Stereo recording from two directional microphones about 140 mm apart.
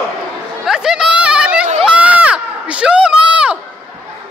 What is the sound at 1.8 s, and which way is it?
Crowd, 10° right (ahead or behind).